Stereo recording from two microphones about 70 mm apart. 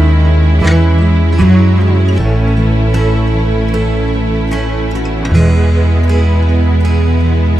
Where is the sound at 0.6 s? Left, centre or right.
Centre.